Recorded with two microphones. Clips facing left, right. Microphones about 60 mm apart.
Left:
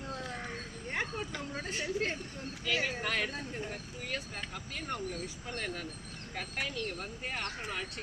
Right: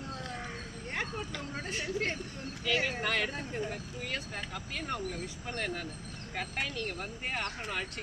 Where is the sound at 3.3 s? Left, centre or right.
Centre.